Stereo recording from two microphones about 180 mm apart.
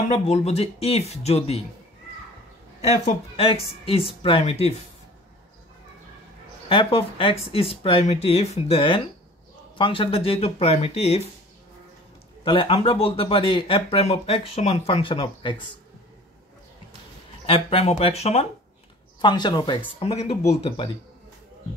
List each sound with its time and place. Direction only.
0.1 s speech: 35° left (ahead or behind)
2.8 s speech: 35° left (ahead or behind)
6.7 s speech: 30° left (ahead or behind)
12.4 s speech: 30° left (ahead or behind)
17.5 s speech: 30° left (ahead or behind)
19.2 s speech: 25° left (ahead or behind)